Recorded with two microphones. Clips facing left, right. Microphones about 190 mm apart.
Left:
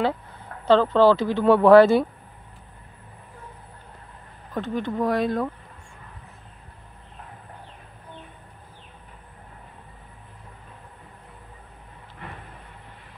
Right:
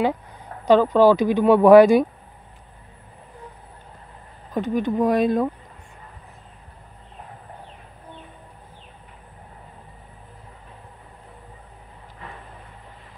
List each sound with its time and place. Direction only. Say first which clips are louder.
0.7 s speech: right 2 dB; 15° right (ahead or behind)
4.6 s speech: right 4 dB; 15° right (ahead or behind)